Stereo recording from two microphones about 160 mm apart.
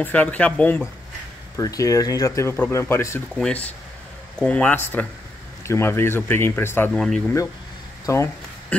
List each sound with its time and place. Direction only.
0.0 s speech: 10° left (ahead or behind)
1.6 s speech: 20° left (ahead or behind)
3.3 s speech: 5° left (ahead or behind)
6.9 s speech: centre (ahead or behind)
8.0 s speech: 20° left (ahead or behind)